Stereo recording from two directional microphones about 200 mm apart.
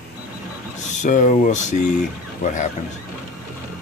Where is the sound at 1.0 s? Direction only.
40° left (ahead or behind).